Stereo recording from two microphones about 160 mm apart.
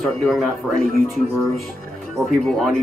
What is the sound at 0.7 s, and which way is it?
Speech, 65° right (ahead or behind).